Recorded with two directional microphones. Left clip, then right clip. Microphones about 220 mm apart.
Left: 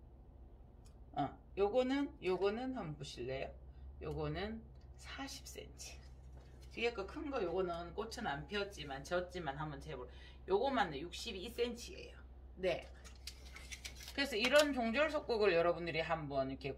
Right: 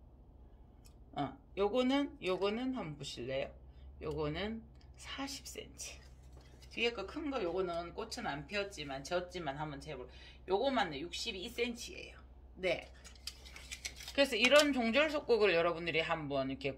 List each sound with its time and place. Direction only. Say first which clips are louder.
1.1 s speech: even; 40° right (ahead or behind)
6.7 s speech: right 3 dB; 40° right (ahead or behind)
14.1 s speech: right 4 dB; 40° right (ahead or behind)